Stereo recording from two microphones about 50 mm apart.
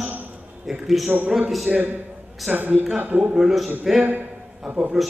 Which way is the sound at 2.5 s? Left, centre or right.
Right.